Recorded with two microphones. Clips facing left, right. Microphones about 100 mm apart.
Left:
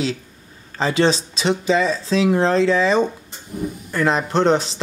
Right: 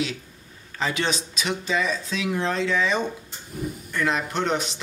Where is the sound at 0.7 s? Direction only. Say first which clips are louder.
Left 8 dB; 30° left (ahead or behind).